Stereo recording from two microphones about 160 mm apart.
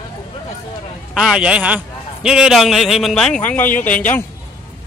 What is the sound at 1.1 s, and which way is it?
A man's voice, 5° right (ahead or behind).